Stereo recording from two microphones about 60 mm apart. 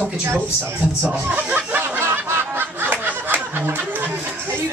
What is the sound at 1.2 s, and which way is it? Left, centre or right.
Speech, right.